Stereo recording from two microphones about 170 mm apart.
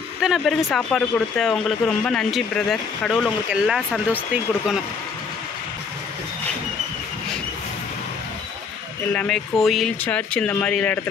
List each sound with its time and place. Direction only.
0.2 s speech: centre (ahead or behind)
9.1 s speech: 5° left (ahead or behind)